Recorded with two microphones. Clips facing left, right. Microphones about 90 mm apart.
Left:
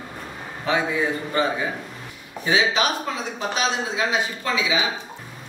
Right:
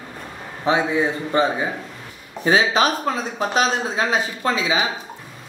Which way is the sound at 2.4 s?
40° right (ahead or behind).